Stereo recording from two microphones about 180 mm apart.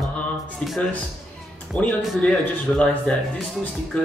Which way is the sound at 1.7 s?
Centre (ahead or behind).